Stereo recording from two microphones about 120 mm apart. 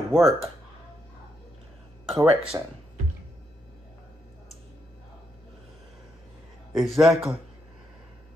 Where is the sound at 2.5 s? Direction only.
25° right (ahead or behind).